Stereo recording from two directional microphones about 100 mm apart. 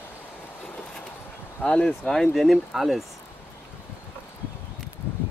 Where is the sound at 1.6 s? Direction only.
10° left (ahead or behind).